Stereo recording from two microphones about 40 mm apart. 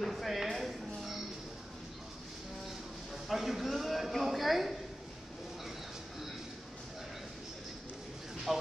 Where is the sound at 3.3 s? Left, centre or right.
Centre.